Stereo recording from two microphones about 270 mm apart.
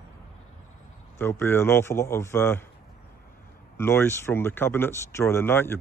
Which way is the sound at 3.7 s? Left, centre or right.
Centre.